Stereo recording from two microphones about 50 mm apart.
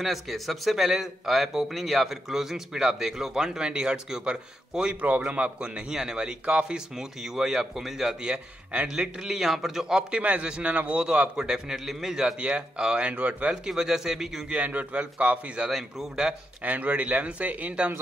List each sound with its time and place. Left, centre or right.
0.0 s a man's voice: centre; by 5.9 s right
5.9 s a man's voice: centre
10.2 s a man's voice: right
12.4 s speech: right
13.7 s a man's voice: centre
14.5 s speech: right
15.7 s a man's voice: centre
16.6 s speech: right